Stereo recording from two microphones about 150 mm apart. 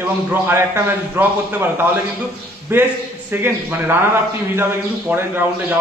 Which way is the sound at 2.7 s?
15° right (ahead or behind).